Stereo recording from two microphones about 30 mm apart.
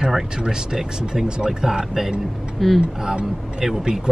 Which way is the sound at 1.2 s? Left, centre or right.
Right.